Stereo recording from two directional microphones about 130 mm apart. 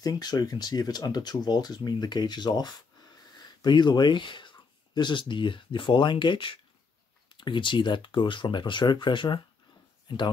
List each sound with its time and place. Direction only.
0.0 s speech: 30° left (ahead or behind)
3.3 s a sound: 35° left (ahead or behind)
5.3 s speech: 40° left (ahead or behind)